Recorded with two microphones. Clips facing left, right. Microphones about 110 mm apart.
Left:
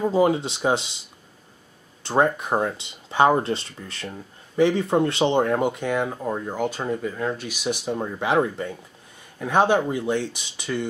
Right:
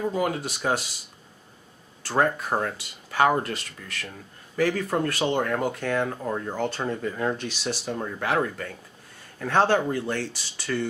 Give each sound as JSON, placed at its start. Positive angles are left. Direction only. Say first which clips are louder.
{"t": 0.0, "sound": "speech", "louder": "left 6 dB", "side_deg": 25}
{"t": 2.0, "sound": "speech", "louder": "left 3 dB", "side_deg": 20}
{"t": 7.4, "sound": "speech", "louder": "left 3 dB", "side_deg": 10}